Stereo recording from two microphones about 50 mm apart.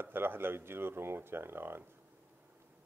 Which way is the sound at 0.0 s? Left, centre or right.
Right.